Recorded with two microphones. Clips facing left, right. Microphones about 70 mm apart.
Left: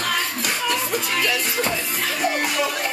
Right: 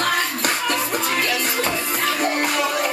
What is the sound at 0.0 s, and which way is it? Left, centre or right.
Music, right.